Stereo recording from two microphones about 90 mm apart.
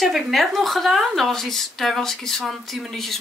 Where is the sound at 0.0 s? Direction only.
Centre (ahead or behind).